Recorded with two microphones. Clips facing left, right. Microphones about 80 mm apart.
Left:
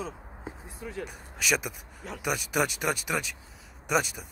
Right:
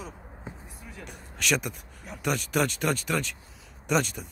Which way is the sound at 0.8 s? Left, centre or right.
Left.